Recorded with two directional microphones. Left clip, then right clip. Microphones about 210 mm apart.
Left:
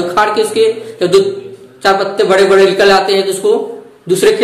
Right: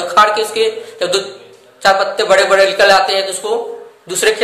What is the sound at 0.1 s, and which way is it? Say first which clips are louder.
A man's voice: right 2 dB; 15° right (ahead or behind).